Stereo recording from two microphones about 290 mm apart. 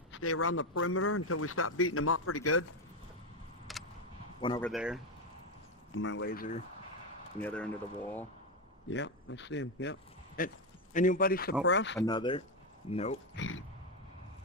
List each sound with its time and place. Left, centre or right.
0.1 s speech: left
3.7 s vehicle: centre
4.4 s speech: centre
4.6 s speech: centre
5.9 s speech: left
7.3 s speech: centre
8.8 s speech: left
12.1 s speech: centre